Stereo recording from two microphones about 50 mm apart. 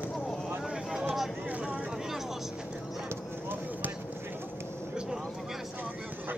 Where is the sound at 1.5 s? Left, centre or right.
Right.